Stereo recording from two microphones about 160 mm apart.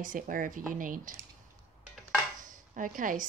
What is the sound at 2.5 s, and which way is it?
Chopping, 55° right (ahead or behind).